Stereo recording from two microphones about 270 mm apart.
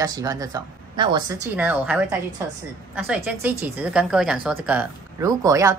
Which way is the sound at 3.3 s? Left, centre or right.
Centre.